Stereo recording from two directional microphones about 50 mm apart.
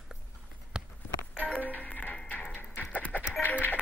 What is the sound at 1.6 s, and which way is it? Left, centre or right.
Music, left.